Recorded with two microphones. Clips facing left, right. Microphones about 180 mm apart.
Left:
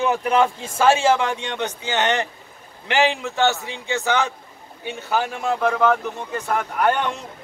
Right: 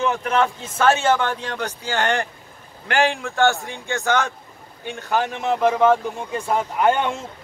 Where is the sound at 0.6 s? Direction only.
30° left (ahead or behind).